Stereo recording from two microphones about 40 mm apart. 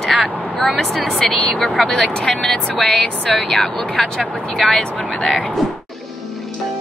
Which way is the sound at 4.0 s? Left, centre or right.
Centre.